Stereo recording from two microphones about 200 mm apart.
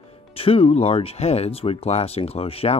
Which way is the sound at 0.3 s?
30° left (ahead or behind).